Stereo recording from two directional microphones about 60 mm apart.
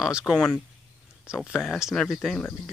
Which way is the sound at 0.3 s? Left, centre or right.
Centre.